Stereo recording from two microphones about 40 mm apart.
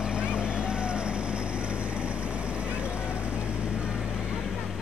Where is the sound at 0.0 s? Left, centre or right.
Right.